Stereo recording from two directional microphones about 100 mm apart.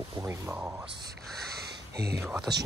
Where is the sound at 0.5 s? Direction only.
15° right (ahead or behind).